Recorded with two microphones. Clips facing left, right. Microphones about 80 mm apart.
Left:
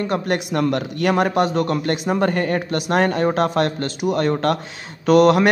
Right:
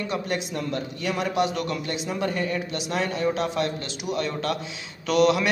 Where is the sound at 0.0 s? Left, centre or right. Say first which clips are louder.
Left 7 dB; left.